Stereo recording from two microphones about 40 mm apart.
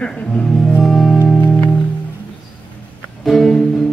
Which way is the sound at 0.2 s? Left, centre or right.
Left.